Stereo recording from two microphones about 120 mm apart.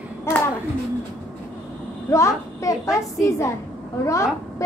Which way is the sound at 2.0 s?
25° left (ahead or behind).